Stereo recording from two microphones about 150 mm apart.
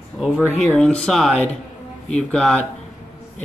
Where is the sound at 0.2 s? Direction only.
10° right (ahead or behind).